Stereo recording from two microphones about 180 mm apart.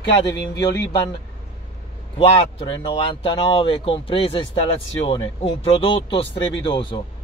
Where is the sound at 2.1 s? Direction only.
30° left (ahead or behind).